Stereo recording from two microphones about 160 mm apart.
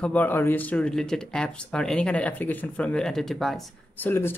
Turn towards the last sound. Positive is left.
turn(degrees=15)  # may be behind; listen again after turning